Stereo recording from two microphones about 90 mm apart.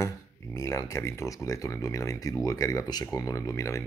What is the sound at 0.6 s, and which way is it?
Speech, 35° left (ahead or behind).